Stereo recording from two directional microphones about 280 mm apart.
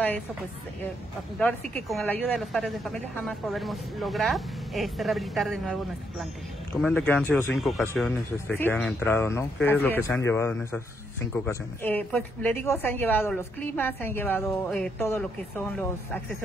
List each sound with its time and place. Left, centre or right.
1.4 s a woman's voice: centre